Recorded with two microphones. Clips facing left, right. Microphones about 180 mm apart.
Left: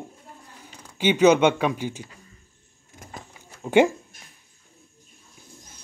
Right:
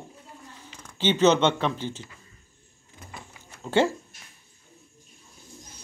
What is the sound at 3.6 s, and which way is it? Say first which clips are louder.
Speech: left 5 dB; 15° left (ahead or behind).